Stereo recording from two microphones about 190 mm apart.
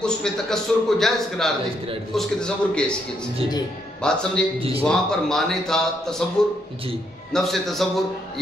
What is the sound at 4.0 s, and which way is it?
Speech, 5° left (ahead or behind).